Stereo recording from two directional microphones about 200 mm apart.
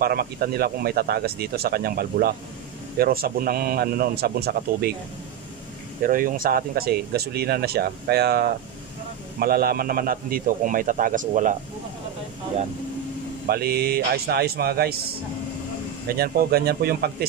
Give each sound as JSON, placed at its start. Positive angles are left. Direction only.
{"t": 0.0, "sound": "speech", "side_deg": -50}
{"t": 6.0, "sound": "speech", "side_deg": -45}
{"t": 13.5, "sound": "speech", "side_deg": -50}
{"t": 16.1, "sound": "speech", "side_deg": -50}